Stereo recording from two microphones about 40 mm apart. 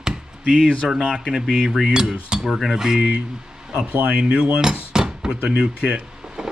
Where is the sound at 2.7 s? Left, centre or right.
Centre.